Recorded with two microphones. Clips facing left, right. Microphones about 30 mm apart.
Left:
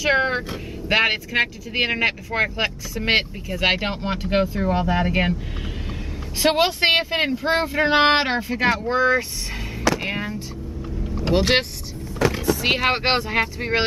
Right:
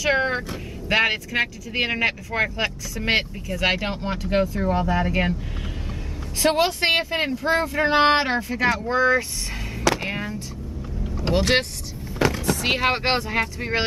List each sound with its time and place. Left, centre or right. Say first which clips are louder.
0.0 s speech: left 2 dB; centre
6.4 s speech: left 2 dB; centre
10.0 s music: left 2 dB; centre
11.3 s speech: left 1 dB; centre